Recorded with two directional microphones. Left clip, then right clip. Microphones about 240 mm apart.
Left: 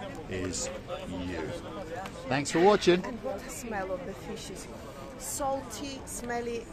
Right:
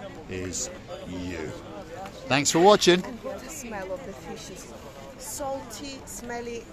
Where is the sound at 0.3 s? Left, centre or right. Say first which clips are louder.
Right 2 dB; centre.